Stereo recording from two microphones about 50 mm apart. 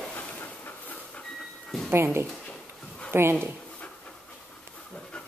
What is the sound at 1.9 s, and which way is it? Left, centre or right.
Speech, right.